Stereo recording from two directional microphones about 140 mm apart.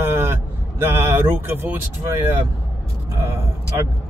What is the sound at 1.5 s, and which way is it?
Speech, 15° right (ahead or behind).